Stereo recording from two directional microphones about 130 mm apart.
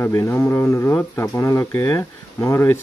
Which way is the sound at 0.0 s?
20° left (ahead or behind).